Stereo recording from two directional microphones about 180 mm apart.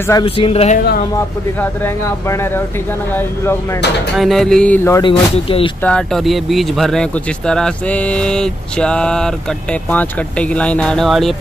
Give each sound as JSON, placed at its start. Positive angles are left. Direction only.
{"t": 0.2, "sound": "speech", "side_deg": 35}
{"t": 0.7, "sound": "speech", "side_deg": 55}
{"t": 2.2, "sound": "speech", "side_deg": 15}
{"t": 4.2, "sound": "speech", "side_deg": 0}
{"t": 5.0, "sound": "speech", "side_deg": 30}
{"t": 5.9, "sound": "speech", "side_deg": 5}